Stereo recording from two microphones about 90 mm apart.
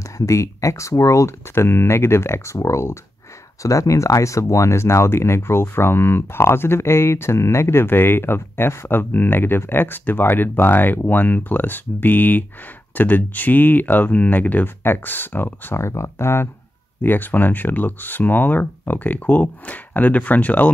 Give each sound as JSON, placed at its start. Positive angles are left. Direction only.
{"t": 0.2, "sound": "speech", "side_deg": 35}